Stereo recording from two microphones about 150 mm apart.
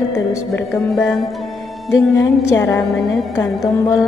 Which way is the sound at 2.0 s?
20° left (ahead or behind).